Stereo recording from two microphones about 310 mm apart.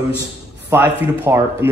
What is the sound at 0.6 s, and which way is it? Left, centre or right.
A man's voice, centre.